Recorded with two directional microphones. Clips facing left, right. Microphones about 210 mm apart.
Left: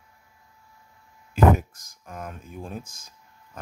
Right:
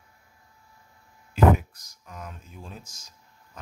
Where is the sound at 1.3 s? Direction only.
45° left (ahead or behind).